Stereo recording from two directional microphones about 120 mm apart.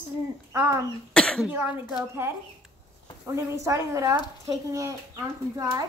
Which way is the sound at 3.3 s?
25° right (ahead or behind).